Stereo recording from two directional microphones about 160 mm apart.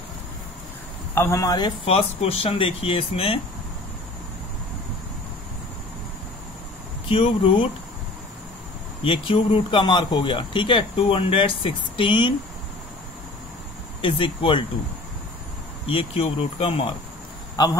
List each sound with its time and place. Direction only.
1.1 s speech: 15° left (ahead or behind)
1.9 s speech: 35° left (ahead or behind)
7.1 s speech: 35° left (ahead or behind)
9.0 s speech: 35° left (ahead or behind)
14.0 s speech: 30° left (ahead or behind)
15.9 s speech: 35° left (ahead or behind)
17.6 s speech: 25° left (ahead or behind)